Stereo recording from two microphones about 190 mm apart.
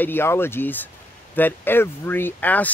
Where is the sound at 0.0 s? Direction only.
10° left (ahead or behind).